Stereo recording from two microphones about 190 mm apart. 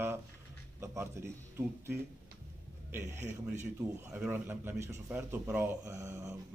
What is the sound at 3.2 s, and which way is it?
Speech, 40° right (ahead or behind).